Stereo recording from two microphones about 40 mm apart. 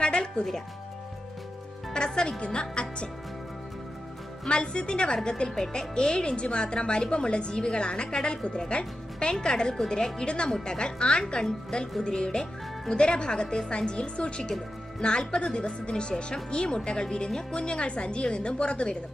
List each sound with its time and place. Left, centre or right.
0.0 s music: left
2.0 s speech: centre
4.5 s a woman's voice: left